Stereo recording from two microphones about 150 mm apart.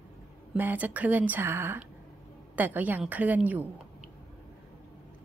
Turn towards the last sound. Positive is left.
turn(degrees=-10)  # may be behind; listen again after turning